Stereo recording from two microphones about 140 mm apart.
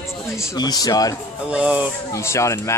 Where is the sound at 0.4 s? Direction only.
30° left (ahead or behind).